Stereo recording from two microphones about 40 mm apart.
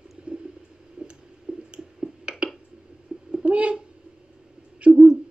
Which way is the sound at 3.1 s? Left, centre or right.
Right.